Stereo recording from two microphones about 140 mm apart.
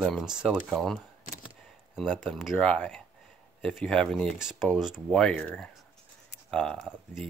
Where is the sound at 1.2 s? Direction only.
75° left (ahead or behind).